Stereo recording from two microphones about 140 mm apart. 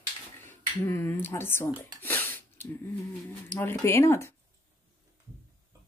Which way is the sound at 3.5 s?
15° left (ahead or behind).